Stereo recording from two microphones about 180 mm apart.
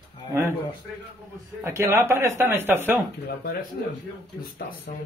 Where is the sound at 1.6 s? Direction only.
15° right (ahead or behind).